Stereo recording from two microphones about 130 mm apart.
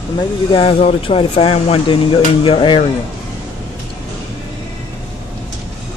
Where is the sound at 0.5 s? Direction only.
45° left (ahead or behind).